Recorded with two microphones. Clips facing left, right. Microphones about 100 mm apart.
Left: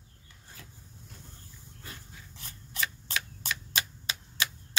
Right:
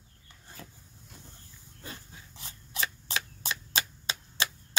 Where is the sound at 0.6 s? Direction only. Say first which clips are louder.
Right 6 dB; 35° right (ahead or behind).